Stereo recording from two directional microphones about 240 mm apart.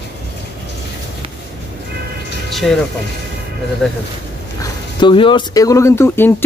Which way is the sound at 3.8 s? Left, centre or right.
Centre.